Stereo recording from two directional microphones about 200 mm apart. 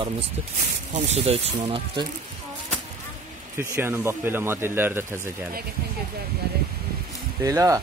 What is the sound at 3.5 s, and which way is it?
Speech, 15° right (ahead or behind).